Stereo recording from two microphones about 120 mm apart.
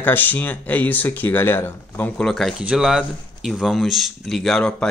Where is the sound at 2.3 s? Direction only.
Centre (ahead or behind).